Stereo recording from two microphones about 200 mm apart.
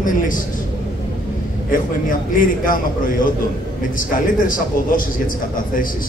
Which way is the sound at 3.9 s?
40° left (ahead or behind).